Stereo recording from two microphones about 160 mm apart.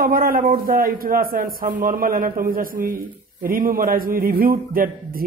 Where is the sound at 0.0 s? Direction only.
65° right (ahead or behind).